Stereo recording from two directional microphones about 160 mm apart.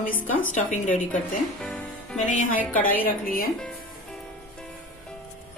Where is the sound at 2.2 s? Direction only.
55° left (ahead or behind).